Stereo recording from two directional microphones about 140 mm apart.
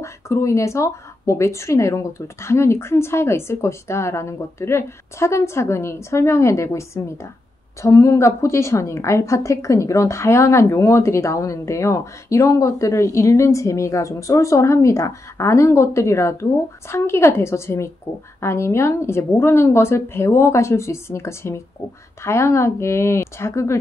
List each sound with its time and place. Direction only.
0.0 s a woman's voice: 20° left (ahead or behind)